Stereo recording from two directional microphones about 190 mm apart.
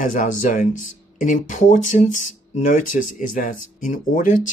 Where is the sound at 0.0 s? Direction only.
45° left (ahead or behind).